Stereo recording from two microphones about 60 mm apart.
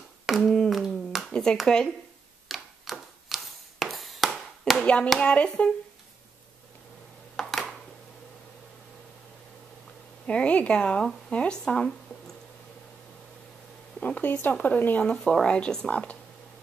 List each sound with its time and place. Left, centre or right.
0.3 s a sound: centre
1.3 s speech: centre
2.4 s tick-tock: centre
3.8 s a sound: centre
4.7 s hands: centre
5.2 s speech: centre
7.3 s a sound: centre
10.2 s speech: centre
14.0 s speech: left
15.4 s speech: centre